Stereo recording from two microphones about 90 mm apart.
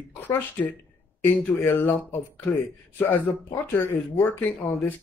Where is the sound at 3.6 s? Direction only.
25° left (ahead or behind).